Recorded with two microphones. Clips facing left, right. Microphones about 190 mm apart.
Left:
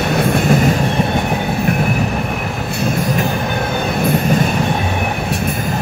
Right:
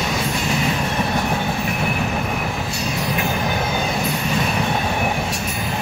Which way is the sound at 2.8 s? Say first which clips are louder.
Left 7 dB; 50° left (ahead or behind).